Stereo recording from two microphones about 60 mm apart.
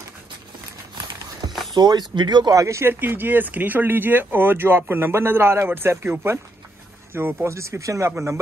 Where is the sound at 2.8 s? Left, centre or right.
Right.